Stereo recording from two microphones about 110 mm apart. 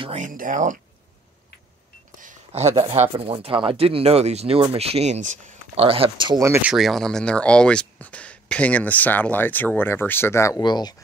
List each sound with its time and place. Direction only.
2.5 s speech: 70° right (ahead or behind); by 6.4 s 45° right (ahead or behind)
6.6 s speech: centre (ahead or behind); by 10.6 s 25° left (ahead or behind)
10.6 s speech: 40° left (ahead or behind)